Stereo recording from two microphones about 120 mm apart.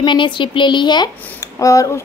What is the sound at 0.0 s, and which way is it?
A woman's voice, 40° left (ahead or behind).